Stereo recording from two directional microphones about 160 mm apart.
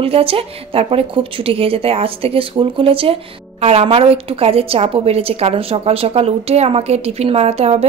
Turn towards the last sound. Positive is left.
turn(degrees=-40)  # may be behind; listen again after turning